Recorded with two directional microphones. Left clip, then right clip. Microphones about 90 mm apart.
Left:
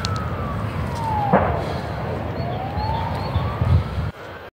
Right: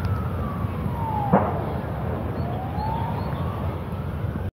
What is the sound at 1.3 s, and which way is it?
Fireworks, 30° left (ahead or behind).